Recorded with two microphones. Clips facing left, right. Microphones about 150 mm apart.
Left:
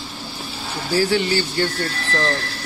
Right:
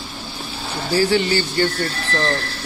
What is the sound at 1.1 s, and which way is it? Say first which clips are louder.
Speech: right 1 dB; 5° left (ahead or behind).